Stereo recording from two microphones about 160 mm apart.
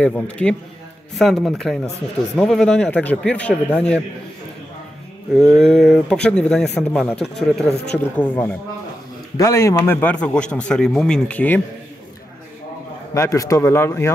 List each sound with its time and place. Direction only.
0.0 s a man's voice: 10° left (ahead or behind)
5.3 s a man's voice: centre (ahead or behind)
13.1 s a man's voice: 20° left (ahead or behind)